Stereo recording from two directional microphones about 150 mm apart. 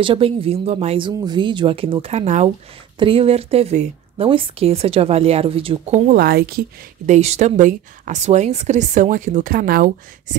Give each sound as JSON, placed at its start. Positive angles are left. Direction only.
{"t": 0.0, "sound": "a woman's voice", "side_deg": -35}
{"t": 6.0, "sound": "speech", "side_deg": -90}
{"t": 7.1, "sound": "speech", "side_deg": -50}